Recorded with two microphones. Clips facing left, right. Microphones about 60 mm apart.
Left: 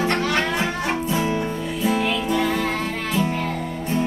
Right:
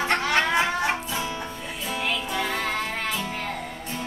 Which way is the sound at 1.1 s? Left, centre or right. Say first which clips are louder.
Left 8 dB; left.